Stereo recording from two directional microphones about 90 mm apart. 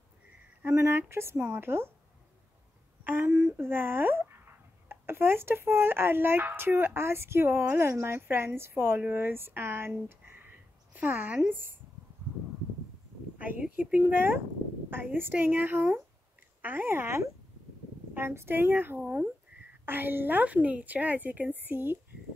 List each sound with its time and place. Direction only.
0.7 s speech: 30° right (ahead or behind)
3.0 s speech: 20° right (ahead or behind)
13.4 s speech: 20° right (ahead or behind)